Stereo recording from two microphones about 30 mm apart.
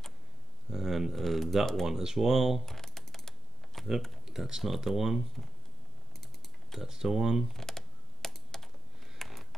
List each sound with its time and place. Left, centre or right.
0.7 s a sound: centre
1.1 s speech: centre
1.9 s speech: centre
2.6 s typing: centre
4.3 s speech: centre
6.8 s speech: centre
7.5 s computer keyboard: centre
9.2 s a sound: centre